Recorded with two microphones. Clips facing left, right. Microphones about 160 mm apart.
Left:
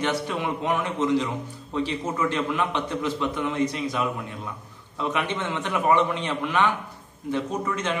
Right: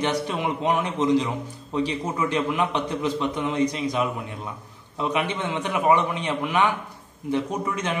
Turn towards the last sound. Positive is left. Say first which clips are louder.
# even
turn(degrees=-15)  # may be behind; listen again after turning